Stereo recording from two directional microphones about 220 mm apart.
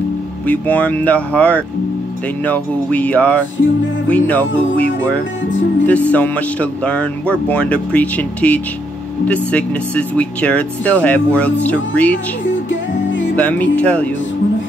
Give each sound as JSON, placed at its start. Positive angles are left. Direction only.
{"t": 0.5, "sound": "speech", "side_deg": 5}
{"t": 5.9, "sound": "speech", "side_deg": 5}
{"t": 12.6, "sound": "music", "side_deg": 55}
{"t": 13.4, "sound": "speech", "side_deg": 5}